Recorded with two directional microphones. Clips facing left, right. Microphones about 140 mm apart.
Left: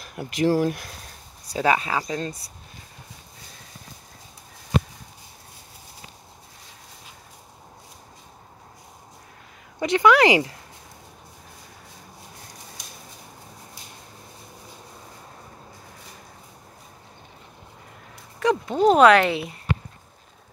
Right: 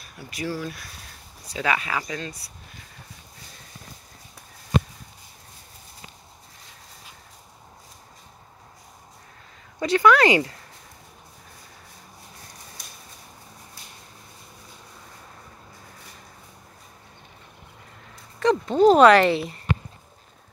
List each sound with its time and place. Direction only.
0.1 s speech: 50° left (ahead or behind)
1.5 s speech: 35° left (ahead or behind)
9.8 s speech: 20° left (ahead or behind)
18.4 s speech: 5° left (ahead or behind)